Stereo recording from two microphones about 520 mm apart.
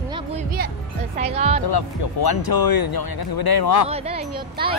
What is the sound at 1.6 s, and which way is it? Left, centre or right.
Speech, left.